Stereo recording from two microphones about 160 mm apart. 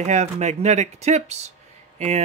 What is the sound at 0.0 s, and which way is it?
Speech, 45° right (ahead or behind).